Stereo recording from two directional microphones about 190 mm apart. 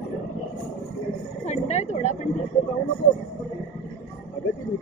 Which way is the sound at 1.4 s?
35° left (ahead or behind).